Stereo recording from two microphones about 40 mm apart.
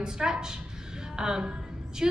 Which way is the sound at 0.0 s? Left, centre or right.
Centre.